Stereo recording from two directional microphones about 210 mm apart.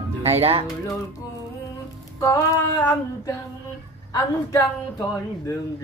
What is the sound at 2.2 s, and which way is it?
Speech, 15° left (ahead or behind).